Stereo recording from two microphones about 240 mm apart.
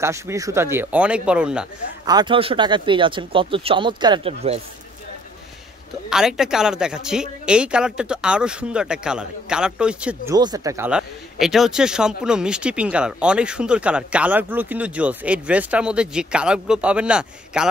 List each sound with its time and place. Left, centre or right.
0.0 s speech: centre
2.0 s speech: centre
6.0 s a man's voice: centre
10.3 s a man's voice: centre